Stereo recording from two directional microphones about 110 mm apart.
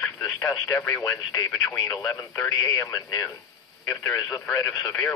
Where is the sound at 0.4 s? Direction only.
20° left (ahead or behind).